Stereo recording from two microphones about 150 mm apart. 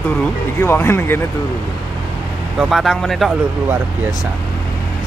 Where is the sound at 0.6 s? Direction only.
15° left (ahead or behind).